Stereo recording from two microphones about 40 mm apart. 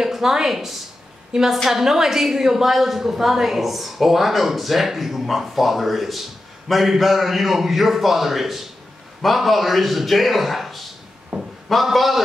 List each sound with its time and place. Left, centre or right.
0.0 s a woman's voice: centre
11.3 s a sound: right
11.7 s a woman's voice: centre